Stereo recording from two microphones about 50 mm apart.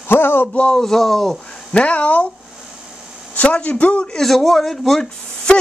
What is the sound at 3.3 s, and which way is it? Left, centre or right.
Speech, left.